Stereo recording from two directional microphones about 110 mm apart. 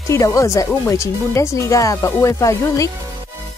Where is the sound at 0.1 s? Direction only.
30° left (ahead or behind).